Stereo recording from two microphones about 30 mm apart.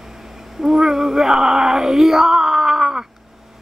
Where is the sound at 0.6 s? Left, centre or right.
Centre.